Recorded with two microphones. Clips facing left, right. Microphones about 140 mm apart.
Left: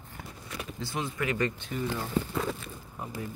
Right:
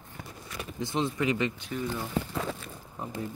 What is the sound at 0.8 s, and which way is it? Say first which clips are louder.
Speech: right 5 dB; 20° right (ahead or behind).